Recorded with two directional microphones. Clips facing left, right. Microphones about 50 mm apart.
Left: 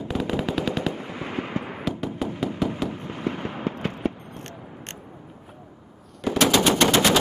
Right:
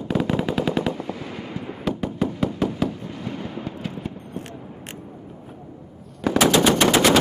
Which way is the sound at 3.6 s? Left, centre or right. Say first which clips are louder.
Left 4 dB; left.